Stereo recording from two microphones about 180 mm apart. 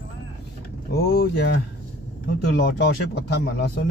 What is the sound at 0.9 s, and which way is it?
Speech, 60° left (ahead or behind).